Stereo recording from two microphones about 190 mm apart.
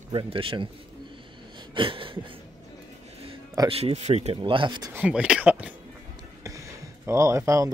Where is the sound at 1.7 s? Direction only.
25° right (ahead or behind).